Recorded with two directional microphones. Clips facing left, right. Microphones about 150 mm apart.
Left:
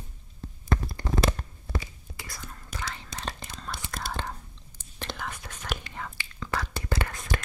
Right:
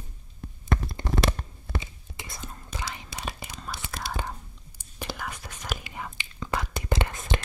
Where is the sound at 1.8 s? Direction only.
20° right (ahead or behind).